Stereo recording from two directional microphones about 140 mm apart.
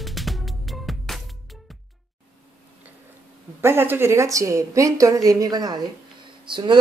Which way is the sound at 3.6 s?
15° right (ahead or behind).